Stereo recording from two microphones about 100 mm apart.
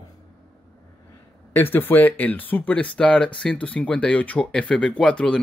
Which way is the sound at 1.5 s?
20° left (ahead or behind).